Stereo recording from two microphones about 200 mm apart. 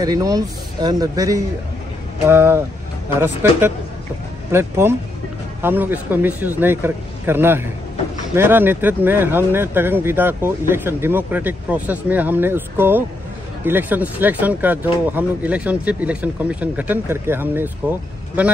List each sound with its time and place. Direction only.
0.0 s speech: 20° right (ahead or behind)